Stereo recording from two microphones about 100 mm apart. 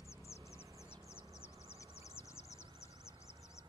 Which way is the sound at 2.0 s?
30° left (ahead or behind).